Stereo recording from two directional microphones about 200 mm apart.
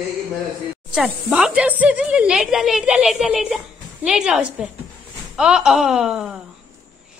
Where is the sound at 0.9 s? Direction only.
5° right (ahead or behind).